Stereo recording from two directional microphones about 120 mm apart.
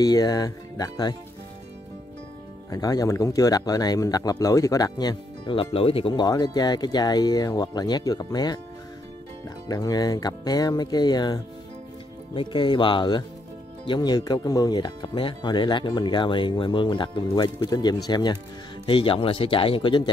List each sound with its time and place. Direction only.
0.0 s speech: 35° left (ahead or behind)
2.7 s speech: 30° left (ahead or behind)
9.7 s speech: 30° left (ahead or behind)
12.4 s speech: 40° left (ahead or behind)
18.9 s speech: 45° left (ahead or behind)